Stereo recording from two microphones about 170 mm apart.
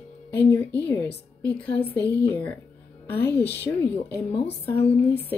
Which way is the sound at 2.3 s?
10° left (ahead or behind).